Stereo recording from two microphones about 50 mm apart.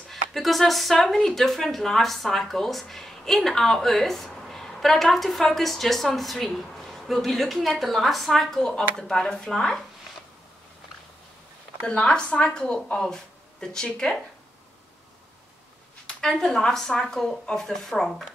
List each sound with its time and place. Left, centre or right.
0.1 s a woman's voice: centre
11.8 s a woman's voice: left
16.1 s a woman's voice: centre